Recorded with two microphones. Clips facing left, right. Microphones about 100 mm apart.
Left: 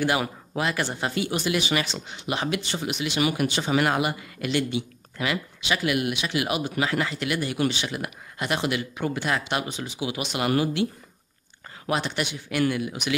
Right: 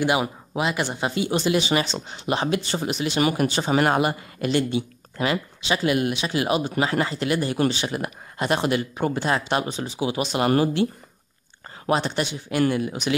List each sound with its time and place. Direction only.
0.0 s speech: 20° right (ahead or behind)